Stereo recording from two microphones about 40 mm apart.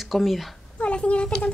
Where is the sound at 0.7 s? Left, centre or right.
Left.